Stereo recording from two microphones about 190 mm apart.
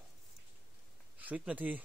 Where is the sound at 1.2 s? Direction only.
10° right (ahead or behind).